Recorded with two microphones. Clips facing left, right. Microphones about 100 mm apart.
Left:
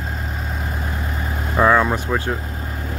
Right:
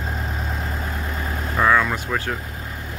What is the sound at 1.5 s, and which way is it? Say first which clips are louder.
Vehicle: left 3 dB; 25° left (ahead or behind).